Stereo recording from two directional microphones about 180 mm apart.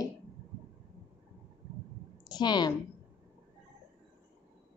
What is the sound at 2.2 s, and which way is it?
Speech, 25° left (ahead or behind).